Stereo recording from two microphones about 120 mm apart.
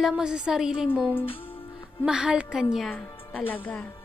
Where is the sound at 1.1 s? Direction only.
15° left (ahead or behind).